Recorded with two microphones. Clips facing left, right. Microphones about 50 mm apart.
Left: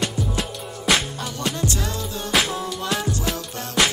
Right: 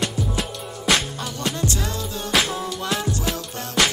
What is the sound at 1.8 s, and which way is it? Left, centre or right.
Music, left.